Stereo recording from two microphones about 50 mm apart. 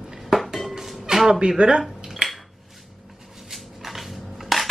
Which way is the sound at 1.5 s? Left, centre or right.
Centre.